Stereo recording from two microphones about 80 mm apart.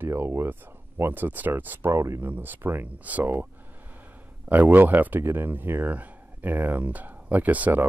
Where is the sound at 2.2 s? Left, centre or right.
Right.